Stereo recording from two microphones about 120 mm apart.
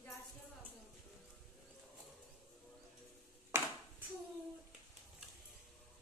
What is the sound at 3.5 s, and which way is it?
Hands, 20° right (ahead or behind).